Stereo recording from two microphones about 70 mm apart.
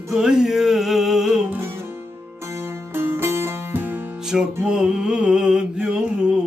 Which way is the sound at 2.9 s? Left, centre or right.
Right.